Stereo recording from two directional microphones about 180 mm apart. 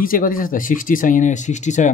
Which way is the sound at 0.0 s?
50° left (ahead or behind).